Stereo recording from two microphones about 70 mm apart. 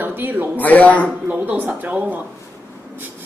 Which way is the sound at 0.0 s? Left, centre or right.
Right.